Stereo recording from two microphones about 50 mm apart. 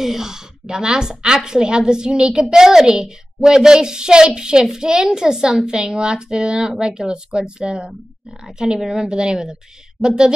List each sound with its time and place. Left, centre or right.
0.0 s a child's voice: centre